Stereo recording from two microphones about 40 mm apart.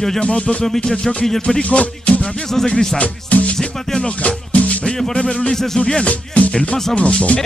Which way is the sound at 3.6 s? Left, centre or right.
Centre.